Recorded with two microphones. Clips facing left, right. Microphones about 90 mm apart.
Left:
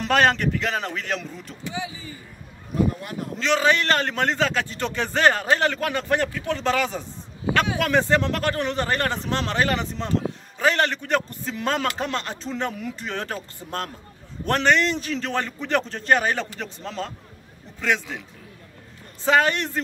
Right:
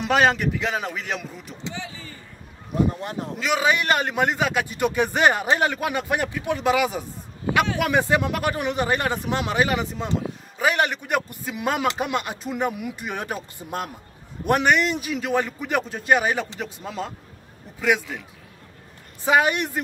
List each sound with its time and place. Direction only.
0.0 s a man's voice: 5° right (ahead or behind)
1.7 s speech: 10° left (ahead or behind)
3.0 s speech: 25° right (ahead or behind)
3.3 s a man's voice: 10° right (ahead or behind)
19.2 s a man's voice: 15° right (ahead or behind)